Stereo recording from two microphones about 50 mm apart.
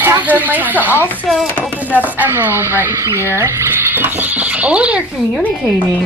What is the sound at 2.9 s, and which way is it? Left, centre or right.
Speech, right.